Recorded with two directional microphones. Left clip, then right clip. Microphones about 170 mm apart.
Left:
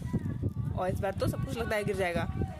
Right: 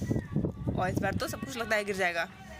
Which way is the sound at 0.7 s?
10° left (ahead or behind).